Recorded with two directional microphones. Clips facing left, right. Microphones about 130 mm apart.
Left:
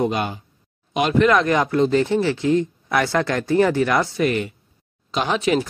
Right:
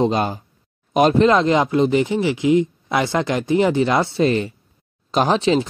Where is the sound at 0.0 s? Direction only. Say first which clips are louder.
Right 3 dB; 35° right (ahead or behind).